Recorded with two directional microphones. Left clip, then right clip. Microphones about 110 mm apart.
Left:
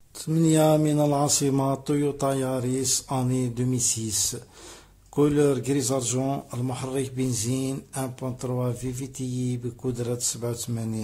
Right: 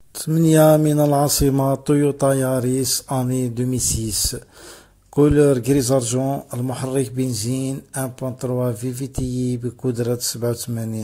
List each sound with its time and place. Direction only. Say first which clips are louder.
0.2 s speech: right 7 dB; 50° right (ahead or behind)
1.2 s speech: right 5 dB; 35° right (ahead or behind)